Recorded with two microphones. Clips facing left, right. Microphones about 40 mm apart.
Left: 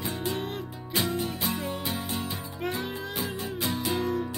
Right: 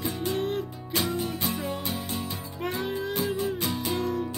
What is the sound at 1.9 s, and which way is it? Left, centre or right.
Music, centre.